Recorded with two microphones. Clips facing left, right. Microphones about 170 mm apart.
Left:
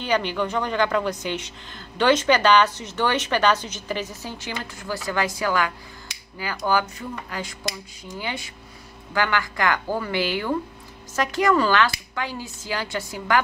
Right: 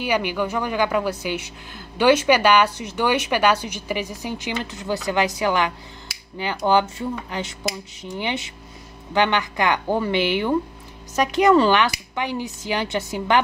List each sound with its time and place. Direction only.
0.0 s speech: 10° right (ahead or behind)